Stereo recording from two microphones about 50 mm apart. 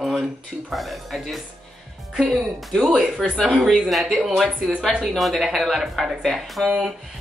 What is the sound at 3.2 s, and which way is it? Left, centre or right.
Speech, centre.